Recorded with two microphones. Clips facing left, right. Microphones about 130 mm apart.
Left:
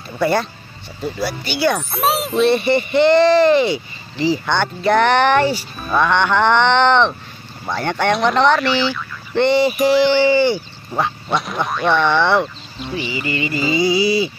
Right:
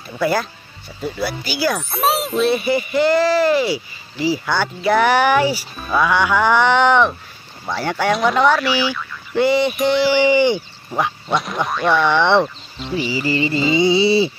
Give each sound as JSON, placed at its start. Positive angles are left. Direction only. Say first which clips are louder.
{"t": 0.2, "sound": "speech", "louder": "left 1 dB", "side_deg": 0}
{"t": 5.9, "sound": "music", "louder": "left 1 dB", "side_deg": -5}
{"t": 7.6, "sound": "speech", "louder": "left 1 dB", "side_deg": -5}
{"t": 10.1, "sound": "music", "louder": "even", "side_deg": -15}
{"t": 10.9, "sound": "speech", "louder": "even", "side_deg": 0}
{"t": 12.9, "sound": "music", "louder": "right 3 dB", "side_deg": -35}